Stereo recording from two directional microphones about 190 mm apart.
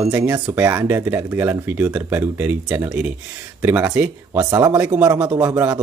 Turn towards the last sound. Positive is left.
turn(degrees=-5)  # may be behind; listen again after turning